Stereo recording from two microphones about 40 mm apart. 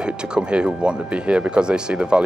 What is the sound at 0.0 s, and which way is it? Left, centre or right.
Speech, right.